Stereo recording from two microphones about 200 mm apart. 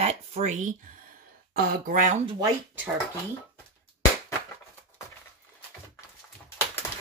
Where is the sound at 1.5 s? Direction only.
45° right (ahead or behind).